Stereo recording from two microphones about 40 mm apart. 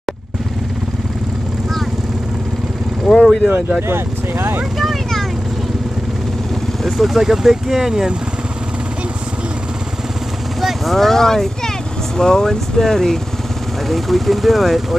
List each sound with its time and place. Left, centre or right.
3.1 s vehicle: centre
3.8 s speech: right
4.7 s vehicle: centre
6.8 s speech: centre
10.6 s vehicle: centre
11.0 s speech: centre